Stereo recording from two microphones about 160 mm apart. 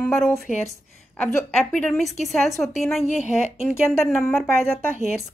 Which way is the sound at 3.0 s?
45° left (ahead or behind).